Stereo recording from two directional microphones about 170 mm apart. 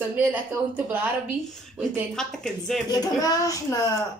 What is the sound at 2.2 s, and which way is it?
Speech, 5° left (ahead or behind).